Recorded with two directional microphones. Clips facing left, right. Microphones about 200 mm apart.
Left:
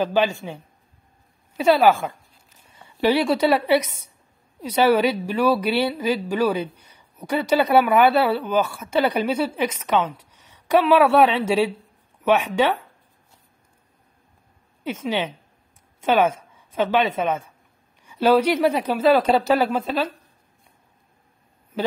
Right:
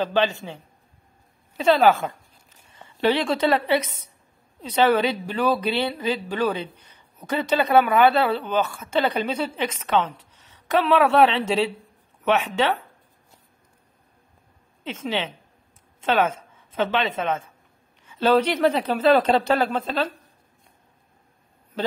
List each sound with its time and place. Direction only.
0.0 s a woman's voice: 10° left (ahead or behind)
1.6 s a woman's voice: 10° left (ahead or behind)
14.8 s a woman's voice: 10° left (ahead or behind)